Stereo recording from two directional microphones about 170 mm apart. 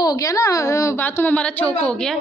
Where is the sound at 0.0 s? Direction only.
20° left (ahead or behind).